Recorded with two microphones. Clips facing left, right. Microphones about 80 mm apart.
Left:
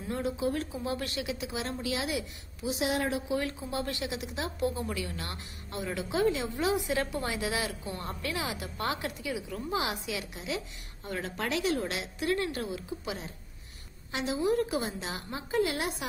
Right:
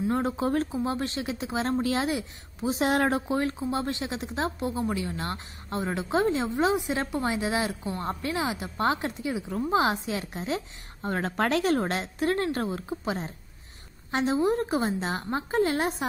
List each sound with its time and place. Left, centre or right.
0.1 s speech: right